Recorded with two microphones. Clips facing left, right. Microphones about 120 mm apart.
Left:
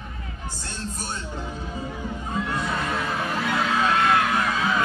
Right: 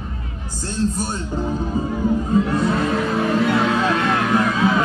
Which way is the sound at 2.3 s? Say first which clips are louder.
Right 6 dB; 35° right (ahead or behind).